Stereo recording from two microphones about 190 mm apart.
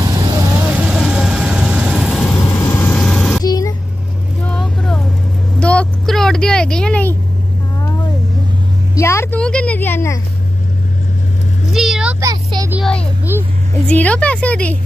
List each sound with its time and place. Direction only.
0.0 s vehicle: 20° right (ahead or behind)
0.7 s vehicle: 5° right (ahead or behind)
3.4 s vehicle: 20° left (ahead or behind)
4.5 s vehicle: 5° left (ahead or behind)
8.9 s a woman's voice: 15° left (ahead or behind)
11.7 s vehicle: 5° right (ahead or behind)
12.2 s speech: 20° right (ahead or behind)
12.7 s a child's voice: centre (ahead or behind)